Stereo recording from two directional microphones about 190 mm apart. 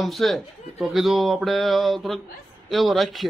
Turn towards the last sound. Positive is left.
turn(degrees=0)  # may be behind; listen again after turning